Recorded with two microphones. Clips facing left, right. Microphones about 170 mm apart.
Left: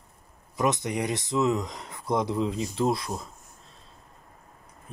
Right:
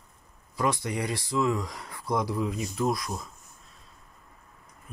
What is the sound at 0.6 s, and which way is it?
Speech, 20° left (ahead or behind).